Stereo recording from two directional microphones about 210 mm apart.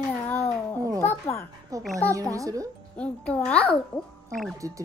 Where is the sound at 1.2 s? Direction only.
10° left (ahead or behind).